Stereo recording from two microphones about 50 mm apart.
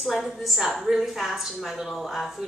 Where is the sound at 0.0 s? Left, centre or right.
Centre.